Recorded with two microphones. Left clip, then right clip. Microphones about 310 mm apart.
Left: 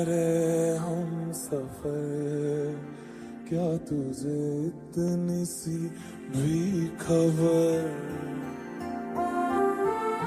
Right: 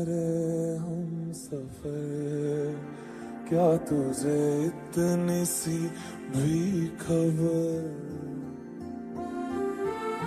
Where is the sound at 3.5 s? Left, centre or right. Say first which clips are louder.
Right 6 dB; centre.